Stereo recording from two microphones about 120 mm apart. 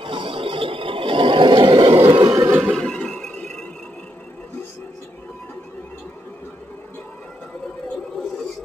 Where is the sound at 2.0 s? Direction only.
45° right (ahead or behind).